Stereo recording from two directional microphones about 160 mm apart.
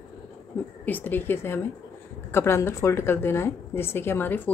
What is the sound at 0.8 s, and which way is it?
A woman's voice, 10° left (ahead or behind).